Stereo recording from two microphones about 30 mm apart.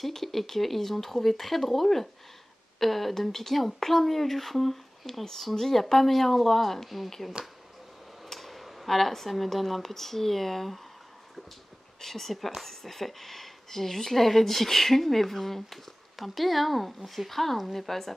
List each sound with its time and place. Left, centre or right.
0.0 s speech: centre
7.4 s speech: right
8.3 s speech: centre
12.0 s speech: centre